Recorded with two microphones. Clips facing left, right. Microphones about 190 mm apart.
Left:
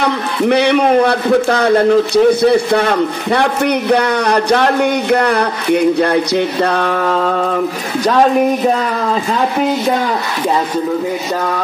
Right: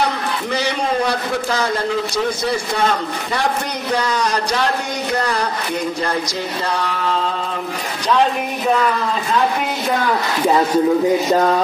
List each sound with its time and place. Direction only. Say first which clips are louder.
0.0 s a man's voice: left 6 dB; 60° left (ahead or behind)